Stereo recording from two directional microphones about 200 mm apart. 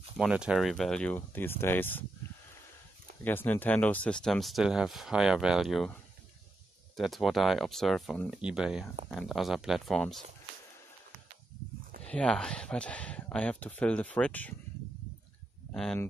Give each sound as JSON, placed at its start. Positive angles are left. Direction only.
{"t": 0.2, "sound": "speech", "side_deg": -5}
{"t": 3.3, "sound": "speech", "side_deg": 10}
{"t": 7.0, "sound": "speech", "side_deg": 0}
{"t": 12.0, "sound": "speech", "side_deg": 5}
{"t": 15.7, "sound": "speech", "side_deg": 5}